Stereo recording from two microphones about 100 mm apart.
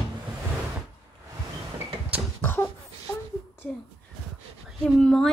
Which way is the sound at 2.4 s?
20° left (ahead or behind).